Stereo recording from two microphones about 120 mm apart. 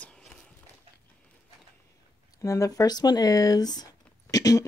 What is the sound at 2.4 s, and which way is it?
Speech, 25° left (ahead or behind).